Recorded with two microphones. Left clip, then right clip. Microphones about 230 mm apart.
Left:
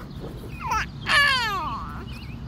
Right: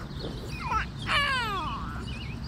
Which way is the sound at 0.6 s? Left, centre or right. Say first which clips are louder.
Left 4 dB; left.